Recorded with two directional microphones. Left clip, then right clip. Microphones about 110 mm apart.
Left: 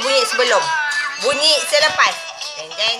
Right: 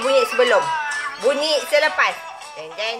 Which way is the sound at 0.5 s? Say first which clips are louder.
Left 3 dB; centre (ahead or behind).